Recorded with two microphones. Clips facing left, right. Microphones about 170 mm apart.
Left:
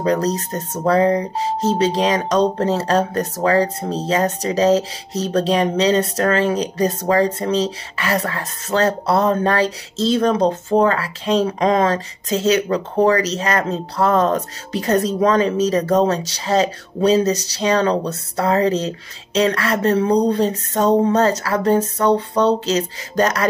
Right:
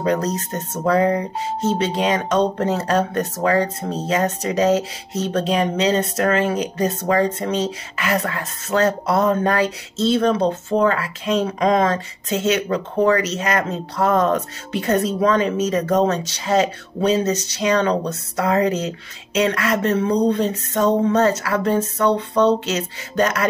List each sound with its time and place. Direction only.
0.0 s speech: 35° left (ahead or behind)